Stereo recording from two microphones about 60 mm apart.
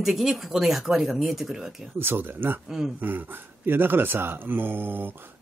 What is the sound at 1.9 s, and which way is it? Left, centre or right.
Speech, right.